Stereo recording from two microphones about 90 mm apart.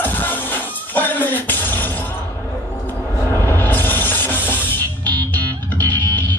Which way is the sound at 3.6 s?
20° left (ahead or behind).